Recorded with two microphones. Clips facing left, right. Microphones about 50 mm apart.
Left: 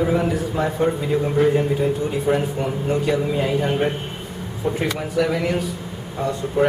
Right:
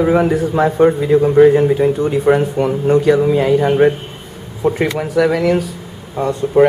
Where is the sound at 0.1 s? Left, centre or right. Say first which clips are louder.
Right 7 dB; right.